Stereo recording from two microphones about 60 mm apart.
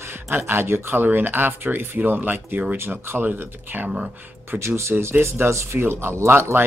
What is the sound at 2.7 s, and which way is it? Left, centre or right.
Speech, right.